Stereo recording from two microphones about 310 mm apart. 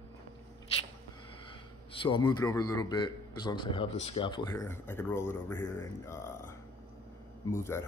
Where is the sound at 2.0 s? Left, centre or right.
Centre.